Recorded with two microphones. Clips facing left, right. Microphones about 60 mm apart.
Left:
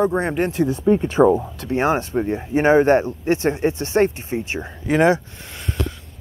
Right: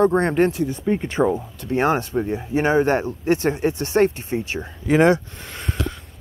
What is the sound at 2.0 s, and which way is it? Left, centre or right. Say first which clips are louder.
Speech: left 1 dB; left.